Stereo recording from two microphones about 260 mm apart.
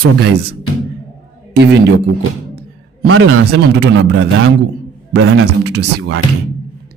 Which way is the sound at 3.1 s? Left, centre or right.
Right.